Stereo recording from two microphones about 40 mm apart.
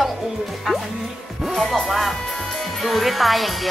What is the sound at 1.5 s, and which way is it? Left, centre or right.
Music, centre.